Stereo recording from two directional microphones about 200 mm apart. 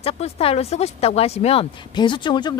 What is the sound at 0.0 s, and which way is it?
Speech, 30° left (ahead or behind).